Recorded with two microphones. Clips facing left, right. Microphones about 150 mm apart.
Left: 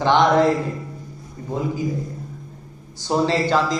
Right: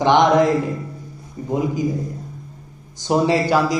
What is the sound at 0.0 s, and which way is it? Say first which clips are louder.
Music: right 2 dB; 20° right (ahead or behind).